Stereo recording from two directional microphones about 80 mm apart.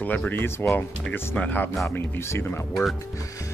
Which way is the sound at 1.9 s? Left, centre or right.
Left.